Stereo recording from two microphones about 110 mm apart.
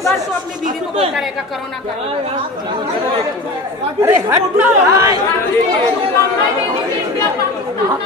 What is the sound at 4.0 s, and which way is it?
Speech, 20° right (ahead or behind).